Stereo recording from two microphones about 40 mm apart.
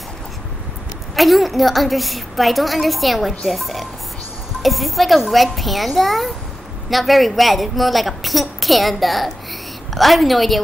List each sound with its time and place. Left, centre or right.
1.1 s a woman's voice: centre